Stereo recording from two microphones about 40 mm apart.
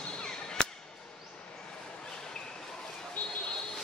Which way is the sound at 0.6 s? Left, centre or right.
Centre.